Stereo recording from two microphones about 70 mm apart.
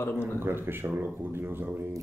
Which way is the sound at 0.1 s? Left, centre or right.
Left.